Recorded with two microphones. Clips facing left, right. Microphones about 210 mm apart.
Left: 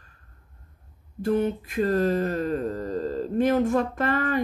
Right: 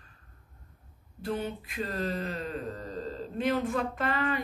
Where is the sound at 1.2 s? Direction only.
50° left (ahead or behind).